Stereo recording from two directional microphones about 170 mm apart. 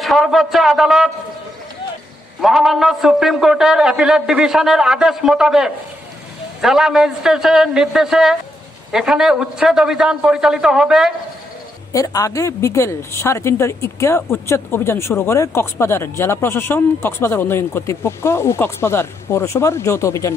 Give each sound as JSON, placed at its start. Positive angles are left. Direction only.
{"t": 0.0, "sound": "a man's voice", "side_deg": 0}
{"t": 2.4, "sound": "a man's voice", "side_deg": 0}
{"t": 11.9, "sound": "a woman's voice", "side_deg": 20}